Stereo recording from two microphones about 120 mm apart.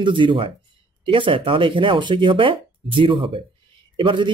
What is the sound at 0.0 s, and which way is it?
A man's voice, 45° right (ahead or behind).